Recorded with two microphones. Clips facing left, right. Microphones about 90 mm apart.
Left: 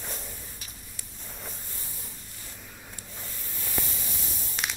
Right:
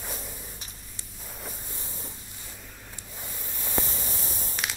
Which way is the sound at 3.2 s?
20° right (ahead or behind).